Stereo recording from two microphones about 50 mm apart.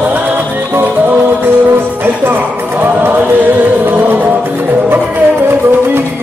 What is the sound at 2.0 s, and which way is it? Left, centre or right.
Music, right.